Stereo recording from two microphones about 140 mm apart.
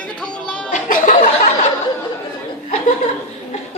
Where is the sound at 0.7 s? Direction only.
65° left (ahead or behind).